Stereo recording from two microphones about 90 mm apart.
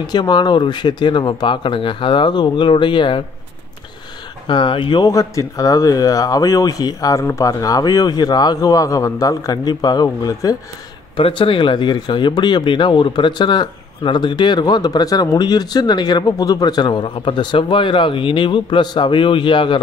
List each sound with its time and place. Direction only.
0.0 s speech: 55° left (ahead or behind)
4.5 s speech: 60° left (ahead or behind)
5.0 s speech: 35° left (ahead or behind); by 10.0 s 55° left (ahead or behind)
10.0 s speech: 40° left (ahead or behind)
11.1 s speech: 80° left